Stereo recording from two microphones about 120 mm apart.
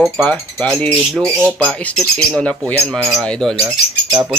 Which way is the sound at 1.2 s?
15° right (ahead or behind).